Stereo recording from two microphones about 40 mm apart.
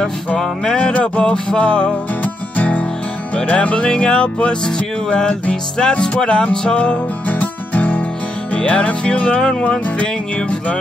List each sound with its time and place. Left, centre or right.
0.4 s music: centre
0.9 s music: left
2.5 s music: left
3.3 s music: left
7.2 s music: left
8.5 s music: left